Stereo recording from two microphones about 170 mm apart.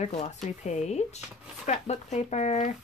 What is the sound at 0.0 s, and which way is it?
Speech, 40° left (ahead or behind).